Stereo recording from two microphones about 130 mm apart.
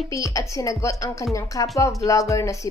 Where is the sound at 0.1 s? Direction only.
25° left (ahead or behind).